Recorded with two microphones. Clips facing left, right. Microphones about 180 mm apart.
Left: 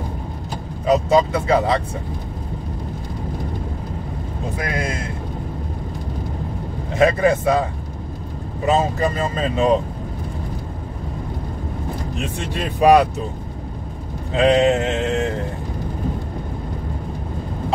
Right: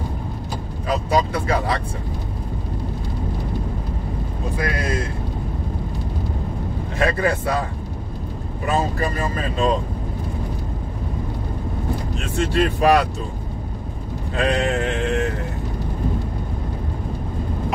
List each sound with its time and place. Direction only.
0.8 s speech: 20° left (ahead or behind)
4.6 s speech: 20° left (ahead or behind)
7.0 s speech: 20° left (ahead or behind)
8.6 s speech: 20° left (ahead or behind)
12.2 s speech: 15° left (ahead or behind)
14.3 s a sound: 20° left (ahead or behind)